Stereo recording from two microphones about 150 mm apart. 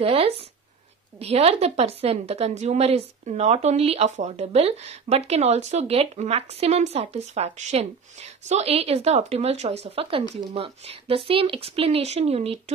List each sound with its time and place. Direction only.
0.0 s a woman's voice: 40° right (ahead or behind)